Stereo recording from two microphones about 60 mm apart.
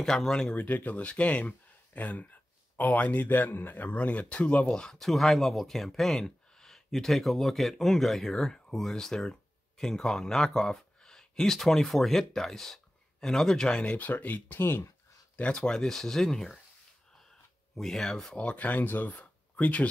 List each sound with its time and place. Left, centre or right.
0.0 s speech: centre
0.6 s speech: left
4.9 s speech: centre
13.9 s speech: left
14.6 s speech: left
15.3 s speech: centre
17.7 s speech: centre; by 19.9 s left